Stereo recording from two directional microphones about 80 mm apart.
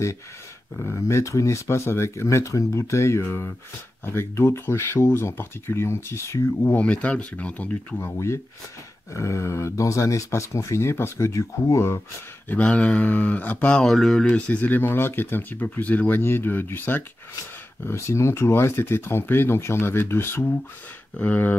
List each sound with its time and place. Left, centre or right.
0.8 s speech: left
6.7 s speech: centre
8.0 s speech: left
12.4 s speech: centre
14.2 s speech: centre